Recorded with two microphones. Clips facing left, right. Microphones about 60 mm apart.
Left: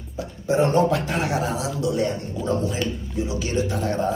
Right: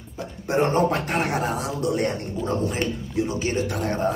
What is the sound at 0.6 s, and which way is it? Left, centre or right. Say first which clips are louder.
Speech: left 1 dB; right.